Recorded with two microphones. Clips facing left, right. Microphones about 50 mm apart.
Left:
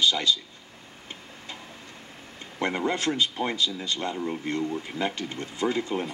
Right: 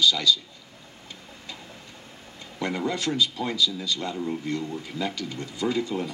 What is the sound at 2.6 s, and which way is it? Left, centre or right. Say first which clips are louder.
Speech: left 1 dB; left.